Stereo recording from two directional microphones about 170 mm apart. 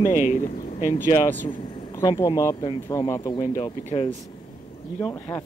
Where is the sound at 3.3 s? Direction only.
30° left (ahead or behind).